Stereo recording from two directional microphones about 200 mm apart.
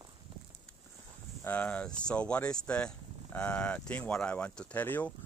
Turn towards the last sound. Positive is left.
turn(degrees=10)  # may be behind; listen again after turning